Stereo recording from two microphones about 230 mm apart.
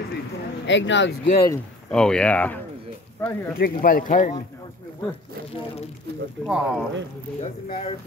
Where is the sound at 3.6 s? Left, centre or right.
Left.